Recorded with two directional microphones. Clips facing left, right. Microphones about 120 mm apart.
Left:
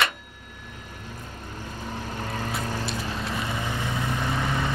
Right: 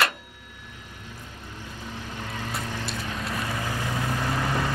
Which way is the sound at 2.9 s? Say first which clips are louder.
Left 2 dB; 30° left (ahead or behind).